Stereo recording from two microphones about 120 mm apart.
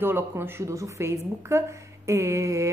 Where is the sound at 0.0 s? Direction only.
20° right (ahead or behind).